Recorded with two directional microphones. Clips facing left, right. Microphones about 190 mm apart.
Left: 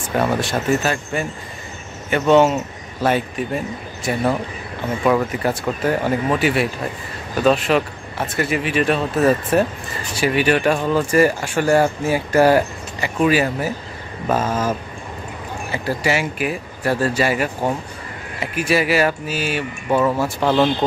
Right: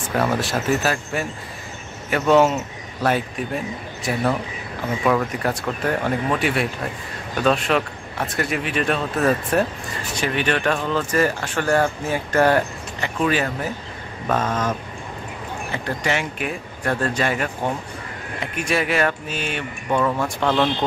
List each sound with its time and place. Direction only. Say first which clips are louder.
0.0 s speech: left 2 dB; centre (ahead or behind)